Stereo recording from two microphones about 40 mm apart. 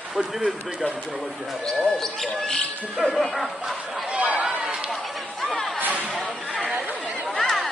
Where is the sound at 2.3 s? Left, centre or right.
Left.